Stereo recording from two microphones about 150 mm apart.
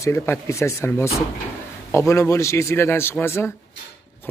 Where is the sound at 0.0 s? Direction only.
20° left (ahead or behind).